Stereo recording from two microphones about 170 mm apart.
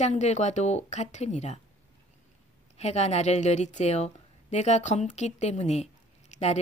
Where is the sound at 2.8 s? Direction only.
40° left (ahead or behind).